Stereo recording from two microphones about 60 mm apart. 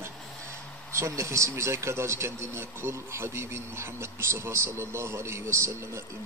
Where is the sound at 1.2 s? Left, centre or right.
Right.